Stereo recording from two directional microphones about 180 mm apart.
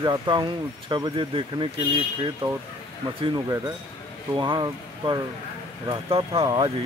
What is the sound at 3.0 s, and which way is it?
Speech, 25° right (ahead or behind).